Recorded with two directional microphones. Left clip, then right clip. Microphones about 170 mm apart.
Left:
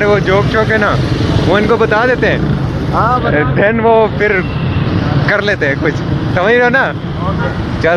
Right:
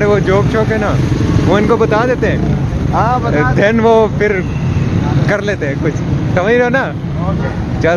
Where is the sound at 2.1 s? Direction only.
5° left (ahead or behind).